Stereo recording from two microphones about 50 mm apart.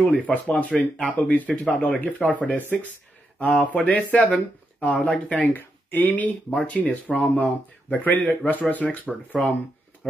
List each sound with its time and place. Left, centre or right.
0.0 s speech: left
2.1 s speech: centre
2.6 s speech: left
3.3 s speech: left
9.3 s speech: centre